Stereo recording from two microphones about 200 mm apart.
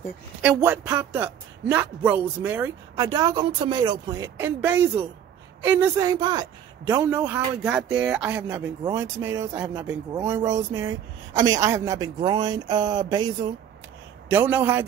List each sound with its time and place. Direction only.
0.4 s speech: 10° right (ahead or behind)
14.3 s speech: 10° right (ahead or behind)